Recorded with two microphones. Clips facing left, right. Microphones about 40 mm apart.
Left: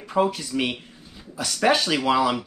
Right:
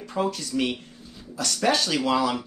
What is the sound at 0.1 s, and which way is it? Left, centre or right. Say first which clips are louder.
Speech: left 4 dB; centre.